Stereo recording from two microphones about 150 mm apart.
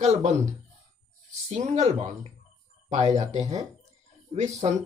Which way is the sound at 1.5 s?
50° right (ahead or behind).